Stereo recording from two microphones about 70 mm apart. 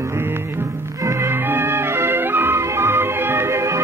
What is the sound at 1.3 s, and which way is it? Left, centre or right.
Music, right.